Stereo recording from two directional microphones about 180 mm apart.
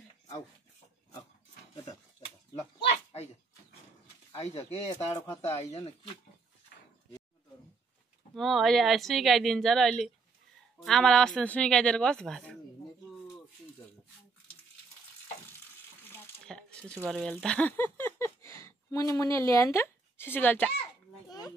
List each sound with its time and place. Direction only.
4.6 s speech: 35° left (ahead or behind)
4.9 s speech: 15° left (ahead or behind)
8.4 s speech: centre (ahead or behind)
16.0 s coin: 10° left (ahead or behind)
17.1 s a sound: centre (ahead or behind)
21.3 s children playing: 20° left (ahead or behind)